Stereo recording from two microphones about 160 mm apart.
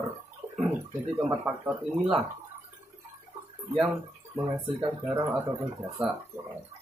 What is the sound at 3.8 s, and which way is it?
Speech, 15° right (ahead or behind).